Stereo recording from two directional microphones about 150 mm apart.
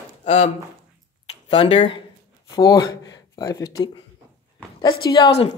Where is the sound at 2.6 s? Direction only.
25° left (ahead or behind).